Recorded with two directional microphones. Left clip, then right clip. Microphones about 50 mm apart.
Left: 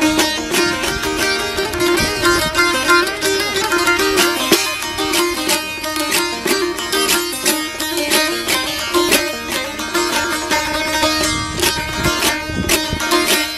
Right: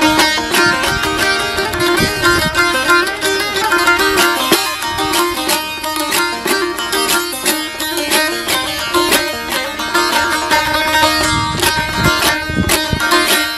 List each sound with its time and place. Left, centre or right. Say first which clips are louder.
0.0 s music: right 4 dB; centre